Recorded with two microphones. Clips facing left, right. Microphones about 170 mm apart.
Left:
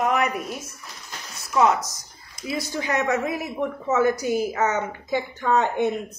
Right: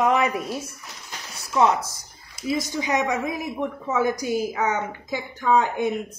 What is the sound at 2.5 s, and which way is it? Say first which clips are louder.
A woman's voice: right 1 dB; 15° right (ahead or behind).